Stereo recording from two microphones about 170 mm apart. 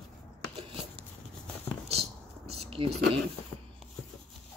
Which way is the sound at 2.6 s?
30° right (ahead or behind).